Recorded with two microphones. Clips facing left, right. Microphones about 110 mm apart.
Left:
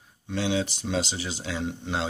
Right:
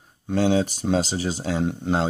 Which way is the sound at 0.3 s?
45° right (ahead or behind).